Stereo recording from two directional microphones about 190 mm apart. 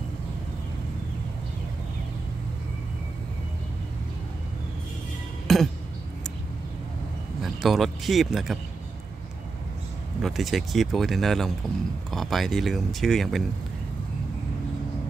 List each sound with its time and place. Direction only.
5.5 s a sound: centre (ahead or behind)
7.4 s speech: centre (ahead or behind)
10.2 s speech: centre (ahead or behind)